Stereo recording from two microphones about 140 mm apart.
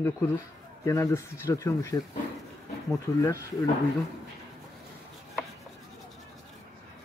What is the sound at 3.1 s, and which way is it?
Speech, 20° left (ahead or behind).